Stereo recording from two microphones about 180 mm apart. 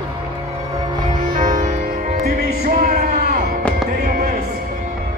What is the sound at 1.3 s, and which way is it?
Music, 45° right (ahead or behind).